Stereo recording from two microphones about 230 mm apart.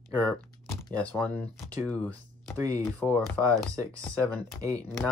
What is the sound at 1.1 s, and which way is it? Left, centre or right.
Speech, centre.